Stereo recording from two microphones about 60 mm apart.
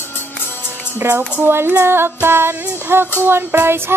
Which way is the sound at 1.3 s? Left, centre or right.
Right.